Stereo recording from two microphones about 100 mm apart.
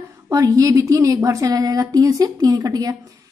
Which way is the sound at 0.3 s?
35° right (ahead or behind).